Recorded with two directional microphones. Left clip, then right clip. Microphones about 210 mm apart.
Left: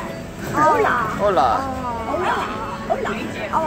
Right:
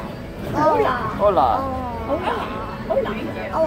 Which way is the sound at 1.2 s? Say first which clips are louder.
Right 1 dB; centre (ahead or behind).